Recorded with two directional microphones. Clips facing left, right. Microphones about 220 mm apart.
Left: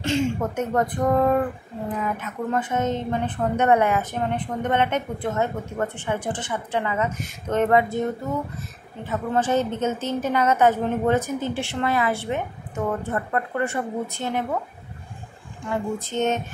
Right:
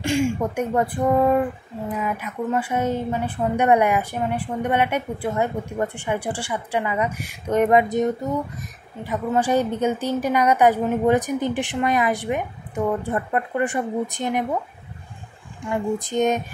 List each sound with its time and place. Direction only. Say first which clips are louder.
0.0 s a woman's voice: right 2 dB; 10° right (ahead or behind)
15.7 s a woman's voice: right 3 dB; 15° right (ahead or behind)